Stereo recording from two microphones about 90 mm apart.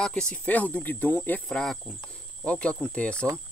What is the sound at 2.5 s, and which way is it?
Cricket, 10° left (ahead or behind).